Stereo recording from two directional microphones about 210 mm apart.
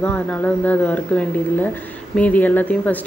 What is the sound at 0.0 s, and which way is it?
Speech, 5° left (ahead or behind).